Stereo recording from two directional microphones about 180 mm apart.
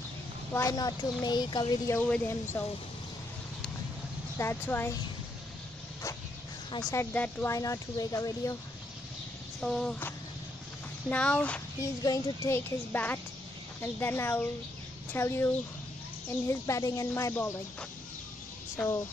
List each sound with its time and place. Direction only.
0.5 s speech: 15° left (ahead or behind)
2.0 s speech: 10° left (ahead or behind)
4.4 s speech: 15° left (ahead or behind)
6.9 s speech: 10° left (ahead or behind)
9.6 s a sound: 5° left (ahead or behind)
11.1 s speech: 10° left (ahead or behind)